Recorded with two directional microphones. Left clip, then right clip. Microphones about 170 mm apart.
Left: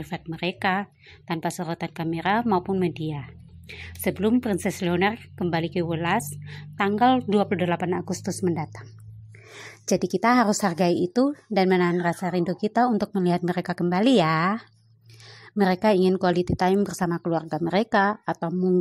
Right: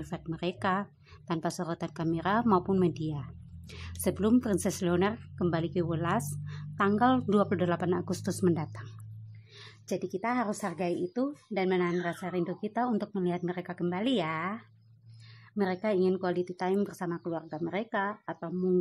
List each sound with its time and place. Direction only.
0.0 s speech: centre (ahead or behind)
9.6 s a woman's voice: 25° left (ahead or behind)
18.5 s a woman's voice: 20° left (ahead or behind)